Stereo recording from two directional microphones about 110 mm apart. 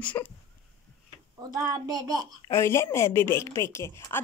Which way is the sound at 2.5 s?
25° left (ahead or behind).